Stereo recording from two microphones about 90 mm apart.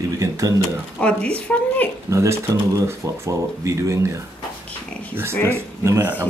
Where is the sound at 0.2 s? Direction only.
40° right (ahead or behind).